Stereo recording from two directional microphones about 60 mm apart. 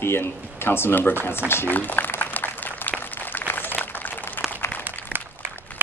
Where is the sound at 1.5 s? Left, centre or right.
Left.